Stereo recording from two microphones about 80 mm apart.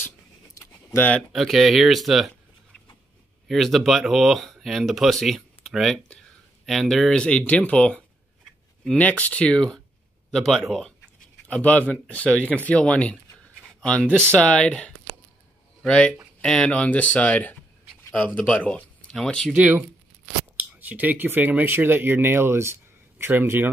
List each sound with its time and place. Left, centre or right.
0.9 s speech: left
1.3 s speech: centre
3.4 s speech: centre
11.4 s speech: centre
14.0 s speech: right
14.3 s speech: centre
15.9 s speech: centre
19.1 s speech: centre
19.5 s speech: centre